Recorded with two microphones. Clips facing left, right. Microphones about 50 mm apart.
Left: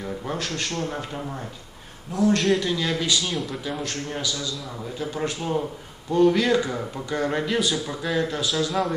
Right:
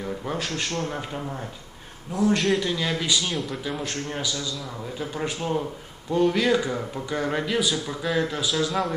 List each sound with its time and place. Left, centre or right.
0.5 s a man's voice: centre
3.8 s a man's voice: centre